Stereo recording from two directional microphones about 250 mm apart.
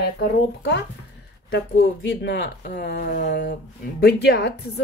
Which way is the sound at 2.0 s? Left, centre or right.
Left.